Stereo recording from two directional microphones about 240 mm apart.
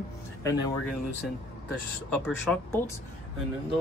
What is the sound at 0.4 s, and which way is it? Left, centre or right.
Speech, centre.